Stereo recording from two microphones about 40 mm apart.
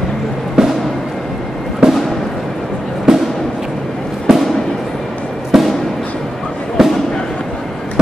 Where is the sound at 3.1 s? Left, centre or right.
Centre.